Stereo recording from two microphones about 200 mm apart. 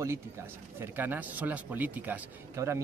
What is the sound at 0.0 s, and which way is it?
Speech, 10° right (ahead or behind).